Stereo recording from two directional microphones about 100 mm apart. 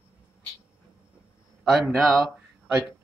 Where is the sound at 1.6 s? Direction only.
Centre (ahead or behind).